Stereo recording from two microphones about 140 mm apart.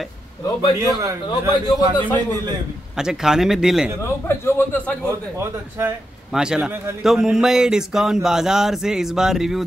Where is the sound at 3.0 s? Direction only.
5° right (ahead or behind).